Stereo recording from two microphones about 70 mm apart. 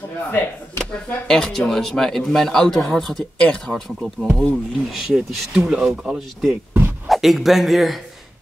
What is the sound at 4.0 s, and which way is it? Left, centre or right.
A man's voice, centre.